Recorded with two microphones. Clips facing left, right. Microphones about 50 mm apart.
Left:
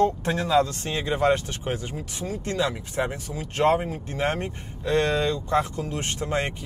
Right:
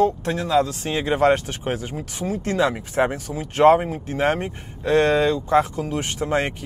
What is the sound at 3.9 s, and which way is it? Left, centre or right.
Speech, centre.